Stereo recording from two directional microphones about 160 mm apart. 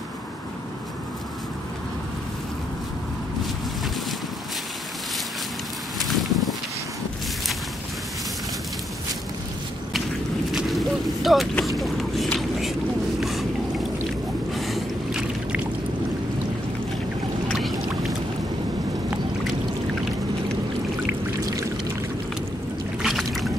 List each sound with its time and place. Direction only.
6.0 s a sound: centre (ahead or behind)
10.5 s a sound: centre (ahead or behind)
13.2 s boat: centre (ahead or behind)
14.5 s boat: centre (ahead or behind)
17.5 s boat: centre (ahead or behind)
21.1 s pour: 20° right (ahead or behind)
23.0 s boat: centre (ahead or behind)